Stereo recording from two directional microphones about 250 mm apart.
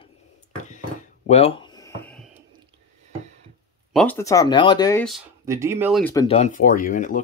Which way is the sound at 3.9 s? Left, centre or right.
Centre.